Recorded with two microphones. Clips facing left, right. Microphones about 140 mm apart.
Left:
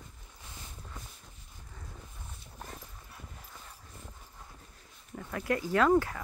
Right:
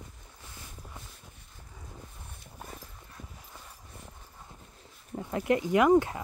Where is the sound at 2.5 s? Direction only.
5° right (ahead or behind).